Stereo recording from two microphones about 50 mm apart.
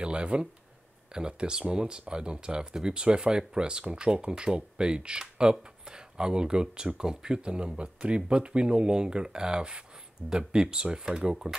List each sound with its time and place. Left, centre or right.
0.0 s speech: centre